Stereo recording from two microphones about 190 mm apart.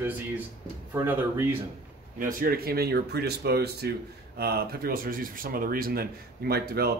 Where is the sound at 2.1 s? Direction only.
50° right (ahead or behind).